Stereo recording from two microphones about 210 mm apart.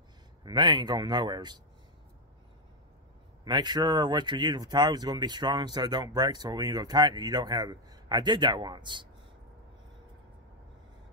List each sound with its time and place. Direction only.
0.4 s speech: 20° right (ahead or behind)
3.4 s speech: 20° right (ahead or behind)